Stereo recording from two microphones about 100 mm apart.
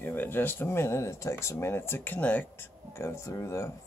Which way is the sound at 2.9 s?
30° left (ahead or behind).